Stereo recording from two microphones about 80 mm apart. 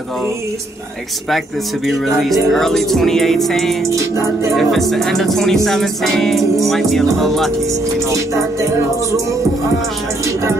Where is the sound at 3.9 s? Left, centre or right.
Right.